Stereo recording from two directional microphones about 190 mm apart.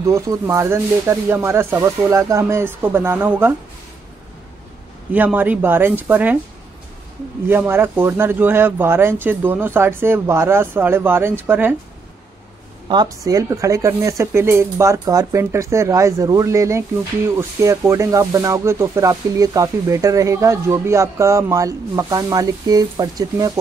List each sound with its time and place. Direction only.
0.1 s speech: 15° right (ahead or behind)
5.1 s speech: 10° right (ahead or behind)
7.4 s speech: 10° right (ahead or behind)
12.8 s speech: 20° right (ahead or behind)